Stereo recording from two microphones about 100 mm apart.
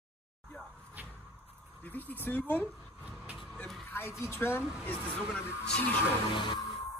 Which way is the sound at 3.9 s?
25° left (ahead or behind).